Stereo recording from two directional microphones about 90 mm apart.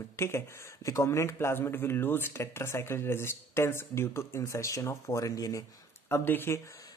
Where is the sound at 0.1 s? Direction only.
30° left (ahead or behind).